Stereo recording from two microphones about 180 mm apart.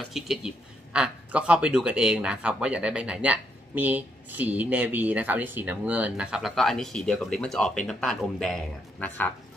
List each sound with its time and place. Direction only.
0.1 s speech: centre (ahead or behind)